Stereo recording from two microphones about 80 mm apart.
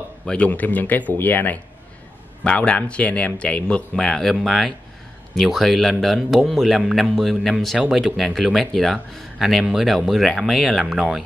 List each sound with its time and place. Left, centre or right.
0.3 s speech: centre